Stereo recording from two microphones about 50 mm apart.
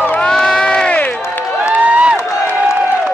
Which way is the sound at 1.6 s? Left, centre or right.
Right.